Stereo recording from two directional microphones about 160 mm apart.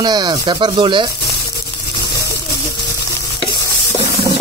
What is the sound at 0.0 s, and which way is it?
Speech, 25° right (ahead or behind).